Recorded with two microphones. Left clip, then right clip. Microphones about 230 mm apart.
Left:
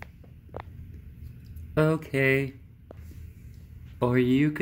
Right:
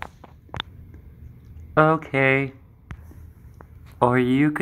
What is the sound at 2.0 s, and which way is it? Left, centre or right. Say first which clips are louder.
Speech: right 5 dB; centre.